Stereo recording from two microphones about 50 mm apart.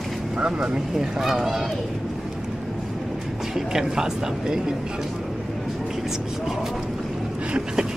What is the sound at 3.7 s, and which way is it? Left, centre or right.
Speech, centre.